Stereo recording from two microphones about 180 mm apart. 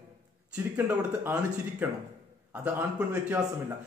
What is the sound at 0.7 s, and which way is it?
Speech, 10° right (ahead or behind).